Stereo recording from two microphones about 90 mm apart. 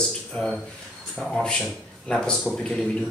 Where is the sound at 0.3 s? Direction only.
5° left (ahead or behind).